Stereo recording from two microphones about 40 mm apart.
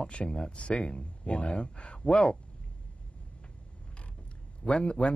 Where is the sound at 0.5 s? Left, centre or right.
Left.